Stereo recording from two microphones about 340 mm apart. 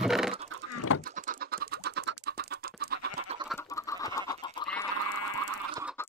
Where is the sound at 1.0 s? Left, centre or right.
Right.